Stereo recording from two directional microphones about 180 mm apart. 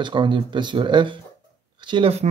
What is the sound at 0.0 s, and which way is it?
Speech, 25° right (ahead or behind).